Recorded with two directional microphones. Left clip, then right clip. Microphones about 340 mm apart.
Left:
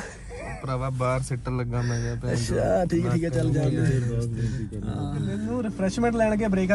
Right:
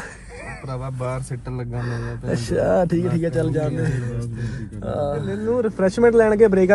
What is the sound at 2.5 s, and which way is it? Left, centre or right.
Speech, right.